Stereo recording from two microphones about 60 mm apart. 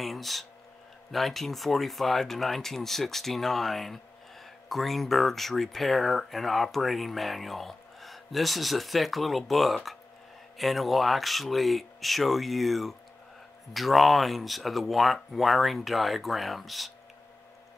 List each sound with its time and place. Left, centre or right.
0.0 s speech: centre